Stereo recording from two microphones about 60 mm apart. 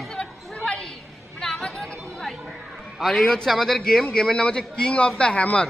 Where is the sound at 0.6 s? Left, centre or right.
Centre.